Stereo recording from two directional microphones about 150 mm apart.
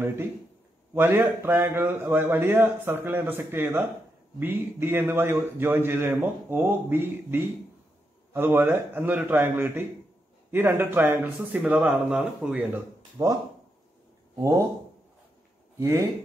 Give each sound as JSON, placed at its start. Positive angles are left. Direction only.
{"t": 0.9, "sound": "a man's voice", "side_deg": -15}
{"t": 13.2, "sound": "speech", "side_deg": -20}
{"t": 15.8, "sound": "speech", "side_deg": -20}